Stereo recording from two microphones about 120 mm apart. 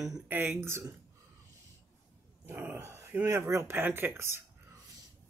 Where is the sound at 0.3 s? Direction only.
20° right (ahead or behind).